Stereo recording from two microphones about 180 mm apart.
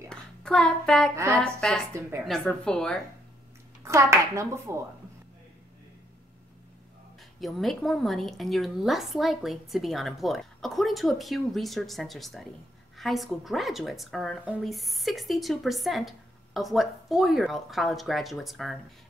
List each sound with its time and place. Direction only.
0.1 s a child's voice: 5° left (ahead or behind)
1.1 s speech: 15° right (ahead or behind)
1.4 s a woman's voice: 5° left (ahead or behind)
3.8 s speech: 15° right (ahead or behind)
7.3 s a woman's voice: centre (ahead or behind)